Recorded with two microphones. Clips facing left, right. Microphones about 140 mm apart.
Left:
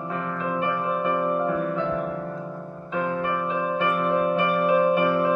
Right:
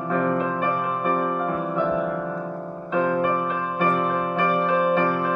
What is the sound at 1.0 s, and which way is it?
Music, 55° right (ahead or behind).